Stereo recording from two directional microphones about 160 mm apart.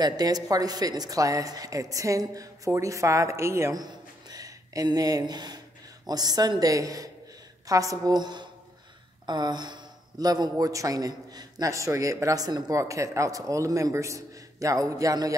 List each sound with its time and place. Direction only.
0.0 s a man's voice: 25° right (ahead or behind)